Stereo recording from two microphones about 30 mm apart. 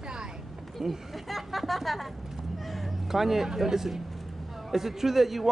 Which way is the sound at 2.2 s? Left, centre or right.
Centre.